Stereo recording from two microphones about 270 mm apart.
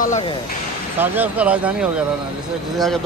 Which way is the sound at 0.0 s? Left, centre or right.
Left.